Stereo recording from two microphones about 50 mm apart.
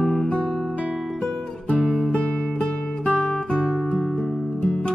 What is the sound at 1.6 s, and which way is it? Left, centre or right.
Music, left.